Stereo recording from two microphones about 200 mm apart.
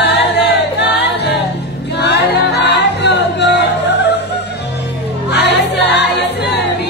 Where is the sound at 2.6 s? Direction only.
60° left (ahead or behind).